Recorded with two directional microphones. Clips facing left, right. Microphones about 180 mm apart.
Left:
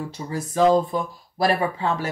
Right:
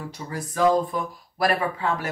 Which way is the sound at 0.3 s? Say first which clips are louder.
Left 3 dB; 25° left (ahead or behind).